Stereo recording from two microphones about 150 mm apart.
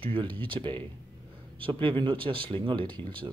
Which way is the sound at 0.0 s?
35° right (ahead or behind).